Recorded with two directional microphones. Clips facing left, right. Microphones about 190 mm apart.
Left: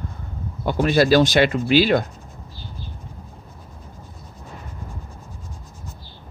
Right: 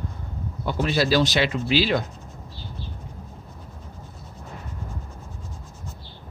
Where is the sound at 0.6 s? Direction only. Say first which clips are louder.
Left 6 dB; 55° left (ahead or behind).